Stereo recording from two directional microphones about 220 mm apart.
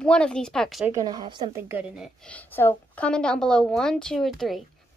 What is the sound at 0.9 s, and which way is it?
A woman's voice, 20° right (ahead or behind).